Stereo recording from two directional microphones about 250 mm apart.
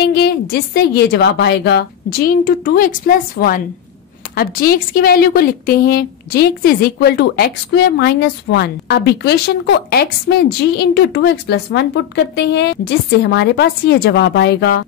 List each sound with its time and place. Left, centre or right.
0.1 s a woman's voice: left